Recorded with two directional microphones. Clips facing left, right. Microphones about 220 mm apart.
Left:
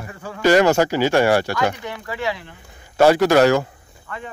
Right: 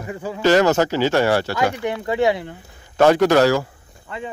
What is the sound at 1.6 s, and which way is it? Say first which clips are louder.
Speech: right 2 dB; 20° right (ahead or behind).